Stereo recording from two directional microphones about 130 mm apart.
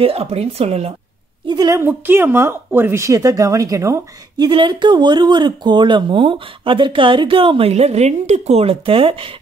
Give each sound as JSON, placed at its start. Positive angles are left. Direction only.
{"t": 0.0, "sound": "speech", "side_deg": -50}
{"t": 1.5, "sound": "speech", "side_deg": -30}
{"t": 1.8, "sound": "a woman's voice", "side_deg": -15}
{"t": 4.5, "sound": "speech", "side_deg": -40}